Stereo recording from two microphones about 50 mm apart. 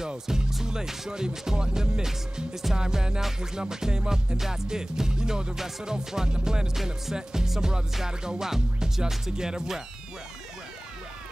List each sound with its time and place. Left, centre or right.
0.0 s speech: centre
0.5 s music: centre